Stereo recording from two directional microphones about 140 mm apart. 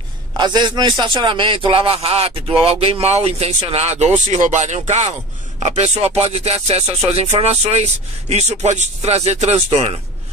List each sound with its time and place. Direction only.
0.4 s a man's voice: 35° right (ahead or behind); by 9.9 s 50° right (ahead or behind)